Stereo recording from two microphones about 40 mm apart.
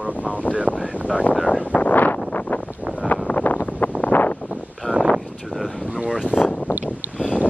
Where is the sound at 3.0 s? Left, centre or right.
Left.